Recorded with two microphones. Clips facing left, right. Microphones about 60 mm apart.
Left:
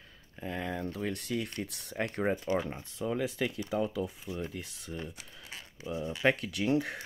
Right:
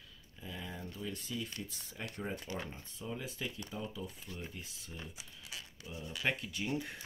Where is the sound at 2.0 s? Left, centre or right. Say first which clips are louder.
Left 10 dB; left.